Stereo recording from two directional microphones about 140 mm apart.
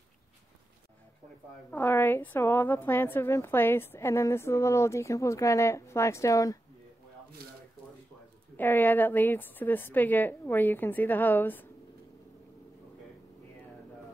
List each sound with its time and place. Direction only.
1.7 s a woman's voice: 15° left (ahead or behind)
7.4 s a sound: 90° right
8.5 s a woman's voice: 15° left (ahead or behind)